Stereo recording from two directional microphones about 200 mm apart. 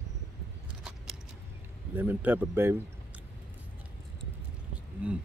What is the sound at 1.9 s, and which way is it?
Speech, 10° right (ahead or behind).